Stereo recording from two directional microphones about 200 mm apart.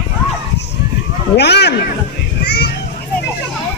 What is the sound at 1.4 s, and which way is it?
Speech, 55° left (ahead or behind).